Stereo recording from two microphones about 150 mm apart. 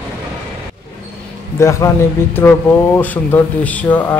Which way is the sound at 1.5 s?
20° left (ahead or behind).